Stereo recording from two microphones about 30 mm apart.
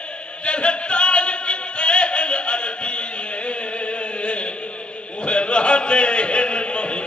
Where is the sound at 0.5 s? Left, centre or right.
Left.